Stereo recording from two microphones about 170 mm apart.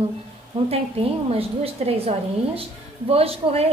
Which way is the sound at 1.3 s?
35° right (ahead or behind).